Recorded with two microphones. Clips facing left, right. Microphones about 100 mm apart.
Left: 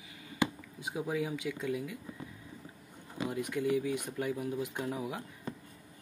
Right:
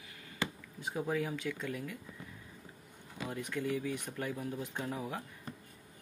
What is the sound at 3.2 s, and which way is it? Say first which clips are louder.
Speech: left 4 dB; 15° left (ahead or behind).